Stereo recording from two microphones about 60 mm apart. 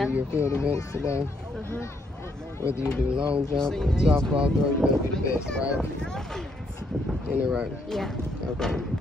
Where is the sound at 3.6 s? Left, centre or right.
Centre.